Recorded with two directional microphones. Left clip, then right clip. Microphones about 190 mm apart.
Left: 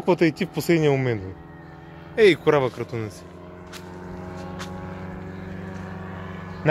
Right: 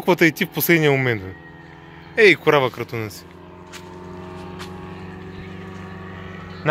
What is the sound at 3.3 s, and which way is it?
Vehicle, 15° left (ahead or behind).